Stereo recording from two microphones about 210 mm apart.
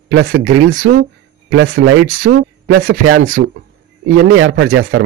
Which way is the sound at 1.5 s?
80° right.